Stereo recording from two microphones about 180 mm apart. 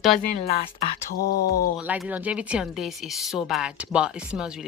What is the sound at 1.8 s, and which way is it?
Speech, 10° right (ahead or behind).